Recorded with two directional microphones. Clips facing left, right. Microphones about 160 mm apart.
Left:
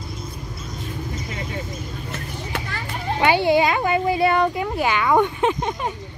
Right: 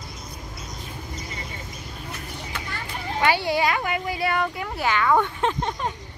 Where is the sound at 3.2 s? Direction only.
20° left (ahead or behind).